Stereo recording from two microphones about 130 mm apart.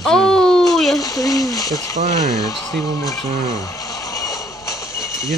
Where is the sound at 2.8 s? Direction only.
25° left (ahead or behind).